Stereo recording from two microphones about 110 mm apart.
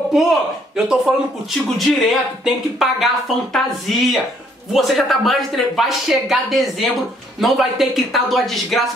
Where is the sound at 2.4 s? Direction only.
Centre (ahead or behind).